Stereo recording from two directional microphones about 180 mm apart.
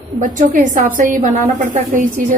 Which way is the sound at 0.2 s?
50° right (ahead or behind).